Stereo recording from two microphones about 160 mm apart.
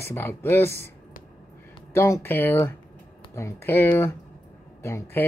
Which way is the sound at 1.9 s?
15° left (ahead or behind).